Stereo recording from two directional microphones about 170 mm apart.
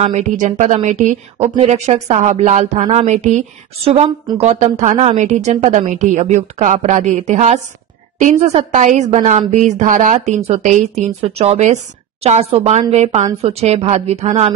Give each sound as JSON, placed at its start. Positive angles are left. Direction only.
{"t": 0.0, "sound": "a woman's voice", "side_deg": -45}